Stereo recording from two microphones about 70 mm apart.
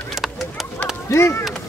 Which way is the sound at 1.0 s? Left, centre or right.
Left.